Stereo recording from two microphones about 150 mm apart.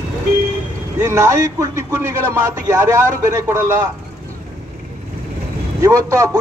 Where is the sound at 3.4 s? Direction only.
20° right (ahead or behind).